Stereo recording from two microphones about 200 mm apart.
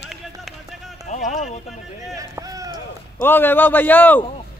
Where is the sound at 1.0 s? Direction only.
40° left (ahead or behind).